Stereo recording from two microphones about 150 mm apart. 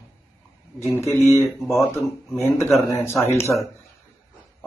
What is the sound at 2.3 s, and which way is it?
A man's voice, 20° left (ahead or behind).